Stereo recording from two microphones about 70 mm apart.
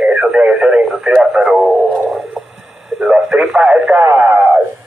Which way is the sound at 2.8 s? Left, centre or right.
Centre.